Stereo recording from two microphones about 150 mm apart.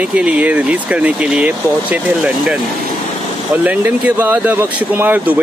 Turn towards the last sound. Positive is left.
turn(degrees=-10)  # may be behind; listen again after turning